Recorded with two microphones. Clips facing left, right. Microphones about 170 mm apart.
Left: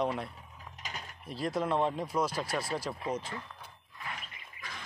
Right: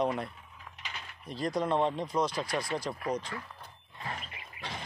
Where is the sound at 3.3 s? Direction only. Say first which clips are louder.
Right 1 dB; 25° left (ahead or behind).